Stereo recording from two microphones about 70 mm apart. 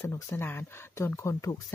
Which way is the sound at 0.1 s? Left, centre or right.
Left.